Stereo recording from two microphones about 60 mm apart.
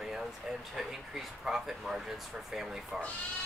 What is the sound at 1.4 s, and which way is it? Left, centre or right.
Speech, centre.